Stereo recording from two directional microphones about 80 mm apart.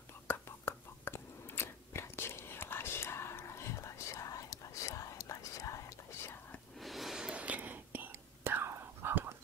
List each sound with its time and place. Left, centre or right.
0.3 s whispering: left
6.8 s whispering: centre; by 8.1 s right
8.1 s whispering: right